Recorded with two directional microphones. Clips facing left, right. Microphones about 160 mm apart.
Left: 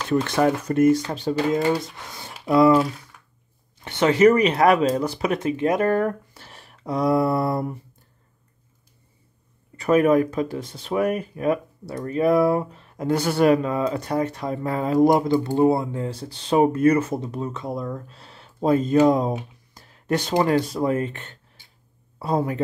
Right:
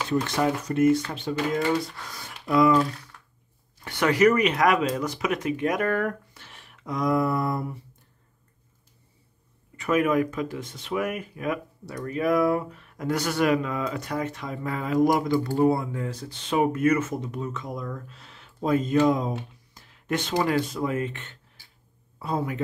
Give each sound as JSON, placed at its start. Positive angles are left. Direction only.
{"t": 0.1, "sound": "speech", "side_deg": 55}
{"t": 1.8, "sound": "speech", "side_deg": 20}
{"t": 2.4, "sound": "speech", "side_deg": 35}
{"t": 3.1, "sound": "a sound", "side_deg": 5}
{"t": 3.8, "sound": "speech", "side_deg": 25}
{"t": 9.8, "sound": "speech", "side_deg": 35}
{"t": 15.3, "sound": "speech", "side_deg": 20}
{"t": 19.7, "sound": "a sound", "side_deg": 40}
{"t": 20.4, "sound": "speech", "side_deg": 35}
{"t": 21.6, "sound": "a sound", "side_deg": 20}
{"t": 22.2, "sound": "speech", "side_deg": 35}